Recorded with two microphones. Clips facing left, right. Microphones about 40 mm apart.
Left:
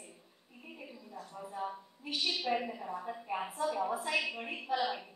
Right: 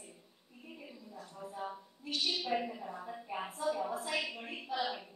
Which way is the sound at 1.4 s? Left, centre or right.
Centre.